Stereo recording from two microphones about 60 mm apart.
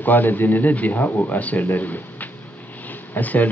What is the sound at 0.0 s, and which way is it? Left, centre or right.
Speech, left.